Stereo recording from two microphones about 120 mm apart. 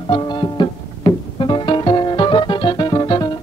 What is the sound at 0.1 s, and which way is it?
Music, 40° left (ahead or behind).